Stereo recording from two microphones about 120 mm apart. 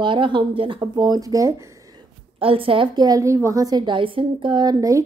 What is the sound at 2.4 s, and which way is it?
Speech, 50° right (ahead or behind).